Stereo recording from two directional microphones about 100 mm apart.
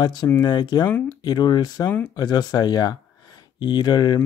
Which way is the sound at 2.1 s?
40° left (ahead or behind).